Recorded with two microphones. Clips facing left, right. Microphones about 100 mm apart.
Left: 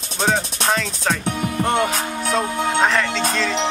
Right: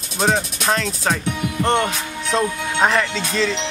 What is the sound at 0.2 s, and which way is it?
Music, centre (ahead or behind).